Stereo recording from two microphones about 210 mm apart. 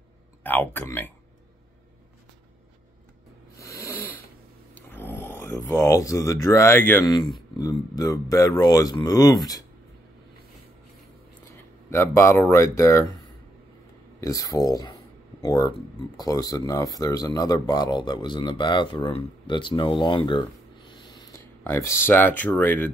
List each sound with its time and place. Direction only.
0.4 s speech: 10° left (ahead or behind)
3.5 s snoring: 10° left (ahead or behind)
4.7 s speech: 10° left (ahead or behind)
11.9 s speech: 10° left (ahead or behind)
14.2 s a man's voice: 15° left (ahead or behind)